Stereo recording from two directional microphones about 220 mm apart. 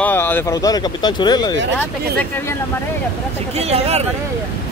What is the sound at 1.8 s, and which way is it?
Speech, 5° left (ahead or behind).